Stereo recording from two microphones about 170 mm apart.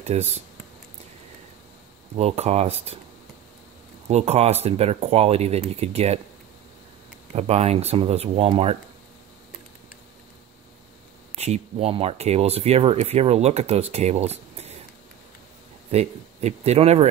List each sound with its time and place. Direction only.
0.0 s speech: 40° right (ahead or behind)
2.1 s speech: 40° right (ahead or behind)
4.1 s speech: 40° right (ahead or behind)
7.3 s speech: 40° right (ahead or behind)
11.3 s speech: 40° right (ahead or behind)
15.9 s speech: 40° right (ahead or behind)